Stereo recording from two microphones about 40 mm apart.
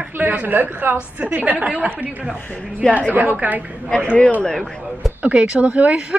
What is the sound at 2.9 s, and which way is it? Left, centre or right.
Speech, right.